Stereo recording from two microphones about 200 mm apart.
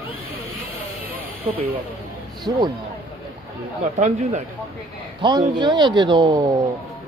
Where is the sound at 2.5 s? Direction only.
20° right (ahead or behind).